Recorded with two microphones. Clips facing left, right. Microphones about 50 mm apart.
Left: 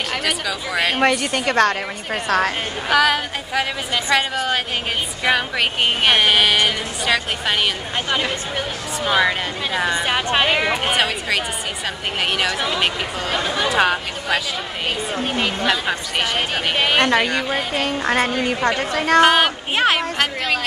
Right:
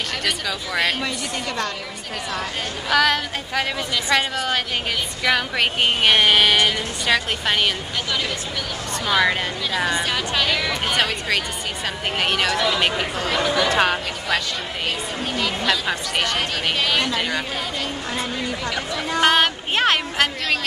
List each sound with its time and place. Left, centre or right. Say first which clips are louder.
0.2 s speech: left 2 dB; centre
1.0 s a woman's voice: left 8 dB; left
2.9 s speech: left 2 dB; centre
8.1 s speech: left 4 dB; left
9.1 s speech: left 1 dB; centre
9.8 s speech: left 3 dB; left
10.7 s speech: left 2 dB; centre
12.2 s speech: even; centre
15.2 s speech: left 2 dB; left
15.6 s speech: left 2 dB; centre
16.3 s speech: left 2 dB; left
17.0 s a woman's voice: left 6 dB; left
19.2 s speech: left 2 dB; centre